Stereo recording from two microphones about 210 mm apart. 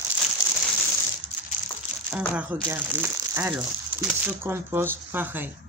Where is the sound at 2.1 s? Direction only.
5° right (ahead or behind).